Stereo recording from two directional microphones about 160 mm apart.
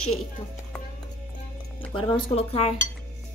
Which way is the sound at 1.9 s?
35° left (ahead or behind).